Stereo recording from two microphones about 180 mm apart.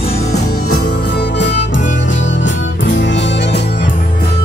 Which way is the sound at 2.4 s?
90° left.